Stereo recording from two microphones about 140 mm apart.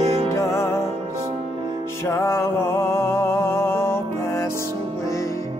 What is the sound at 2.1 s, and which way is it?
Music, 20° left (ahead or behind).